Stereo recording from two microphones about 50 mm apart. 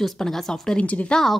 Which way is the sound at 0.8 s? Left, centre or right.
Left.